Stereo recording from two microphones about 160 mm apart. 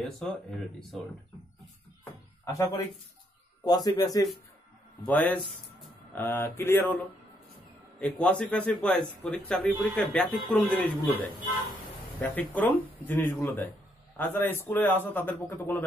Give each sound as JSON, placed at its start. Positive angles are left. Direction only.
{"t": 0.0, "sound": "a man's voice", "side_deg": 5}
{"t": 2.4, "sound": "a man's voice", "side_deg": 20}
{"t": 5.0, "sound": "a man's voice", "side_deg": 10}
{"t": 12.2, "sound": "a man's voice", "side_deg": 10}